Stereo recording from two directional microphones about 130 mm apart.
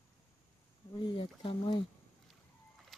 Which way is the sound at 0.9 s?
35° left (ahead or behind).